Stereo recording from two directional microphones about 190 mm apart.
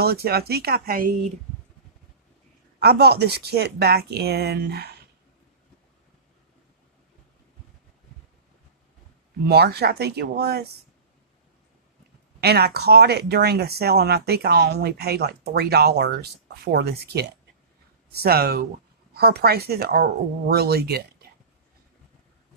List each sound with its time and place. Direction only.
0.0 s speech: 55° right (ahead or behind)
2.8 s speech: 55° right (ahead or behind)
9.5 s speech: 55° right (ahead or behind)
12.4 s speech: 60° right (ahead or behind)